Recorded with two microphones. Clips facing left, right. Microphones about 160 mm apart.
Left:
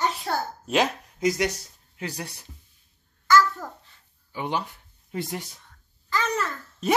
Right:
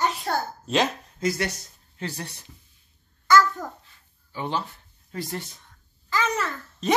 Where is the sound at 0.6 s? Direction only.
15° left (ahead or behind).